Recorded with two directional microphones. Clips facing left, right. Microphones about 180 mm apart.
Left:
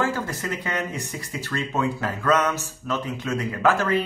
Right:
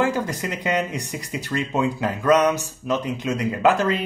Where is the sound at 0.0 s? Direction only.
15° right (ahead or behind).